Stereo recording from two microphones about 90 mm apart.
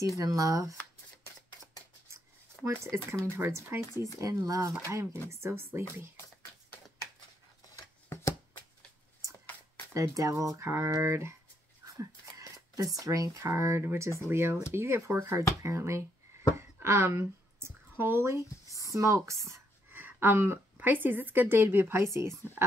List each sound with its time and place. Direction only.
0.2 s speech: 40° right (ahead or behind)
2.8 s a woman's voice: 35° right (ahead or behind)
7.7 s scissors: 35° left (ahead or behind)
9.9 s speech: 40° right (ahead or behind)
11.8 s a sound: 35° right (ahead or behind)
13.0 s a woman's voice: 40° right (ahead or behind)
16.5 s a sound: 30° right (ahead or behind)
19.9 s a woman's voice: 20° right (ahead or behind)